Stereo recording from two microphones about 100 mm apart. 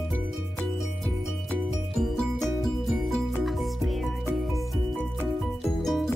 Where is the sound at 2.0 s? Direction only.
Centre (ahead or behind).